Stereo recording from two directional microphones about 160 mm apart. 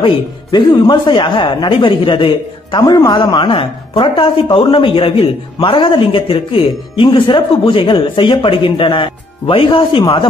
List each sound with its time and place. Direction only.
0.0 s speech: 25° left (ahead or behind)